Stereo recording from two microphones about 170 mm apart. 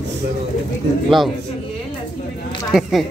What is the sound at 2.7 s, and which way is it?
Speech, 5° right (ahead or behind).